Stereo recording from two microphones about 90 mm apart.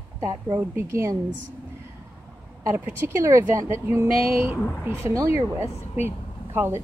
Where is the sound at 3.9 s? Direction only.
30° right (ahead or behind).